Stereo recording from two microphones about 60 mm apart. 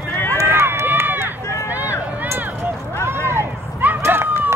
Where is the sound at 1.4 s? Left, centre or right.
Left.